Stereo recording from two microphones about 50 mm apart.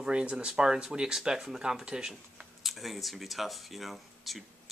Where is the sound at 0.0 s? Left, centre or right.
Right.